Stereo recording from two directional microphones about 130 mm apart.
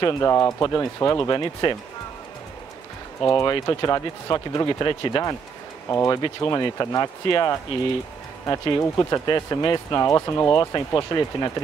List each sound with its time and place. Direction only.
0.0 s speech: 25° left (ahead or behind)
3.2 s speech: 20° left (ahead or behind)
5.9 s speech: 20° left (ahead or behind)
10.5 s speech: 35° left (ahead or behind)